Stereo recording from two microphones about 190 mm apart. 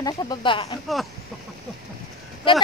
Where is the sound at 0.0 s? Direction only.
25° left (ahead or behind).